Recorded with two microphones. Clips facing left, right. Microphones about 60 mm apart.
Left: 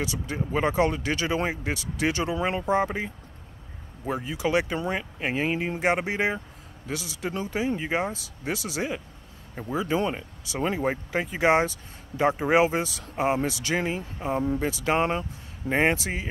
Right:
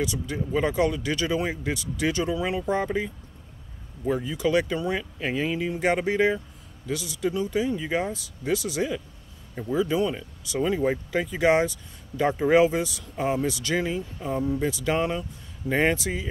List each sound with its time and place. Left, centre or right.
0.0 s speech: left
0.4 s speech: left
2.3 s speech: left
2.6 s speech: left
9.8 s speech: left
14.4 s speech: left